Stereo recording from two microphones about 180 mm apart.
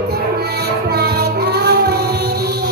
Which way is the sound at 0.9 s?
65° right (ahead or behind).